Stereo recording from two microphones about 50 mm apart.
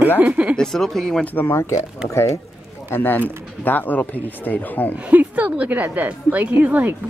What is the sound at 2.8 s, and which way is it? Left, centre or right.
Speech, left.